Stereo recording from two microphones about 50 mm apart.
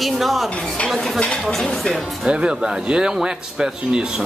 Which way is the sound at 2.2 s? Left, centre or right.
Centre.